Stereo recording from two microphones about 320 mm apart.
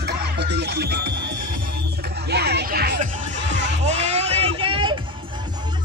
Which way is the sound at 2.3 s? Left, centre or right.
Right.